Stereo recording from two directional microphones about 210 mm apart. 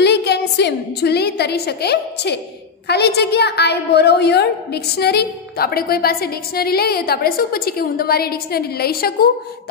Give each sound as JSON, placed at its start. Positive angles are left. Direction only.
{"t": 0.0, "sound": "a woman's voice", "side_deg": 55}